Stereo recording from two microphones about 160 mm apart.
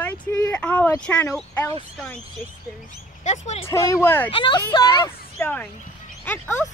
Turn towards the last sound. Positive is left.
turn(degrees=10)  # may be behind; listen again after turning